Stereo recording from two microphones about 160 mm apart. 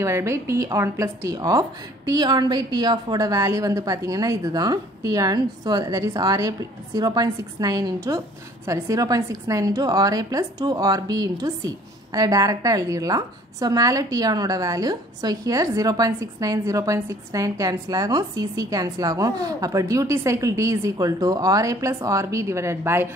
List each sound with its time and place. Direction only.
0.0 s a woman's voice: 15° right (ahead or behind)